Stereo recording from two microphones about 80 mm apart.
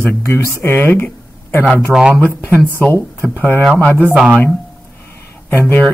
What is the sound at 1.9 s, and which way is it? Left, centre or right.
Speech, centre.